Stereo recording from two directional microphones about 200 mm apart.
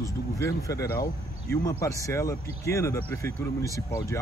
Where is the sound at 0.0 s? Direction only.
15° left (ahead or behind).